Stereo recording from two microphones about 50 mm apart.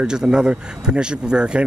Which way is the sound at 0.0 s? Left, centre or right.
Centre.